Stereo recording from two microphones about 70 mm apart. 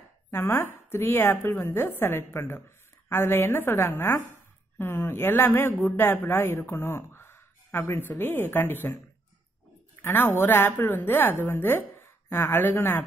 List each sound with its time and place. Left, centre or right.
0.3 s speech: left
10.0 s a woman's voice: left